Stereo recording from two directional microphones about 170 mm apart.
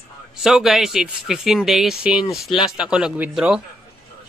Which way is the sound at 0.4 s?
Centre (ahead or behind).